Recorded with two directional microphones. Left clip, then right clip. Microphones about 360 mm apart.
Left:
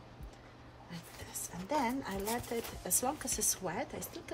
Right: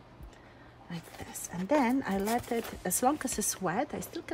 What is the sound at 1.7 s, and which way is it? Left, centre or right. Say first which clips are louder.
A woman's voice: right 6 dB; centre.